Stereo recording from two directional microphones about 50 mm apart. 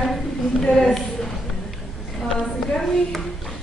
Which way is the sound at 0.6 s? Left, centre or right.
Left.